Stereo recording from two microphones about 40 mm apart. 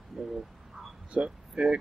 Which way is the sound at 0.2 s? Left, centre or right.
Centre.